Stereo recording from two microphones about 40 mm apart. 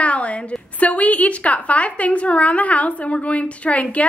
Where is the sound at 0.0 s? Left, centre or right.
Left.